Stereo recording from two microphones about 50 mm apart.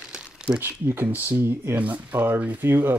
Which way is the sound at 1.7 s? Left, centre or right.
Right.